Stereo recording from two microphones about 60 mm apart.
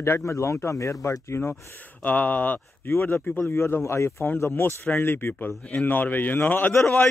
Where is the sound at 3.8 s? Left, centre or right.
Left.